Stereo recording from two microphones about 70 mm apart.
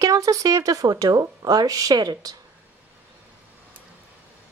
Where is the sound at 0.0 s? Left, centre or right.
Right.